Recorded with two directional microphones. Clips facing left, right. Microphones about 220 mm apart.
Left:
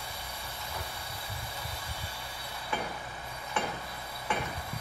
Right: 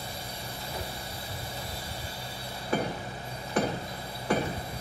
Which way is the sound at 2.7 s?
40° right (ahead or behind).